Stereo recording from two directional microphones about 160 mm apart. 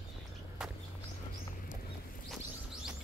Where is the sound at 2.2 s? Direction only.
5° right (ahead or behind).